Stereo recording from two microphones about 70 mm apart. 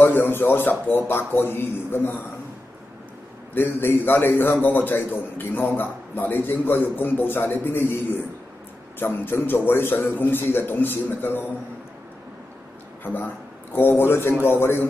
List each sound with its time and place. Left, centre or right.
0.0 s a man's voice: left
3.5 s a man's voice: left
13.0 s a man's voice: left